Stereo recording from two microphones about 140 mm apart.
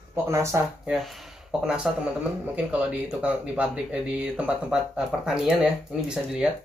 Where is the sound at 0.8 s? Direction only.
Centre (ahead or behind).